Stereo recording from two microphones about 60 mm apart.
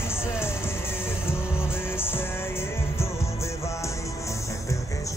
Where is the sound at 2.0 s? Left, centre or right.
Left.